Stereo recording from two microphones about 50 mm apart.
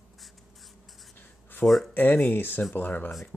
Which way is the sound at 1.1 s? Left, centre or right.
Left.